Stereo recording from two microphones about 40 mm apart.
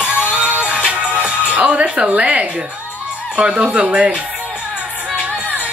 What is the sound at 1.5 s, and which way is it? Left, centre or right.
Speech, right.